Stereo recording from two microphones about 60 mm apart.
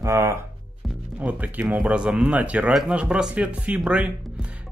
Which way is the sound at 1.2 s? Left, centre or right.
Right.